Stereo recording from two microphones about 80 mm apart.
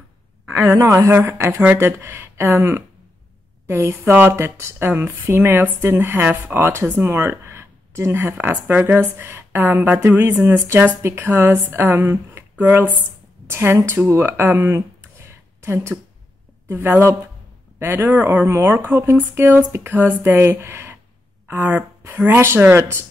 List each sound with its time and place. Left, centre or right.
0.6 s a woman's voice: right
12.5 s speech: right
18.5 s speech: right